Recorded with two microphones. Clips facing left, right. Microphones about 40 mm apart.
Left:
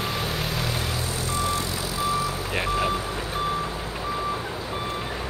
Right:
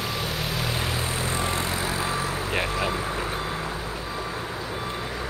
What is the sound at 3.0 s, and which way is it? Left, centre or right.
Reversing beeps, right.